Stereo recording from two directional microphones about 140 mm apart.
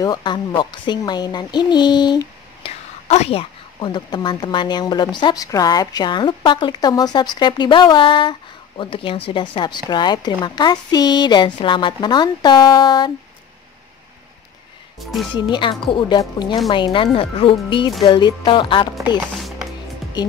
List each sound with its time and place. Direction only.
0.0 s a woman's voice: 30° left (ahead or behind)
3.1 s a woman's voice: 45° left (ahead or behind)
15.3 s a woman's voice: 35° left (ahead or behind)